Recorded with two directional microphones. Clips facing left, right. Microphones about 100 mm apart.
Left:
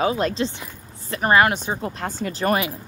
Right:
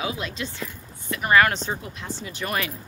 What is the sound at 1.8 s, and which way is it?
Speech, 45° left (ahead or behind).